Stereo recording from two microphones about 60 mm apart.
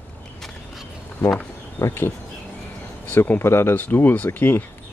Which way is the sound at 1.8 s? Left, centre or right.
Left.